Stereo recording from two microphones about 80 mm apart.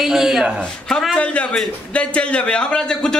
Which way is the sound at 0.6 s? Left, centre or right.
Centre.